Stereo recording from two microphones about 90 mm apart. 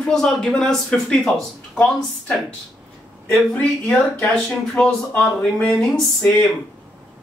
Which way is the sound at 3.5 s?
15° left (ahead or behind).